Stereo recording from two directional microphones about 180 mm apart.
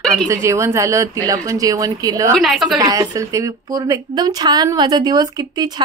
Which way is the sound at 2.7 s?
20° right (ahead or behind).